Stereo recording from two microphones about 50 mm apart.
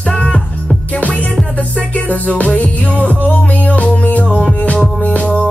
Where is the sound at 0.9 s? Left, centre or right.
Left.